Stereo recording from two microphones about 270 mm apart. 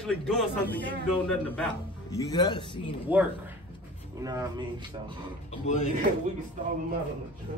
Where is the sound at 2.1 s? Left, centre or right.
Centre.